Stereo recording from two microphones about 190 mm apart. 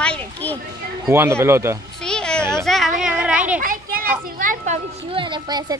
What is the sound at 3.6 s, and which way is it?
A child's voice, 50° right (ahead or behind).